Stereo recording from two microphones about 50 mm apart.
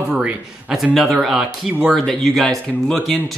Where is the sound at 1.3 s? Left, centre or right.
Centre.